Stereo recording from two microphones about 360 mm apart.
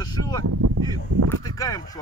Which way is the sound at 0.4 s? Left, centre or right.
Right.